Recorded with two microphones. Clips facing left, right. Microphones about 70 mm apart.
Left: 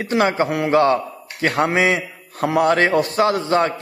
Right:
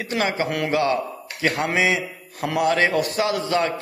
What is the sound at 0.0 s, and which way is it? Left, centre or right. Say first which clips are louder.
A man's voice: left 5 dB; left.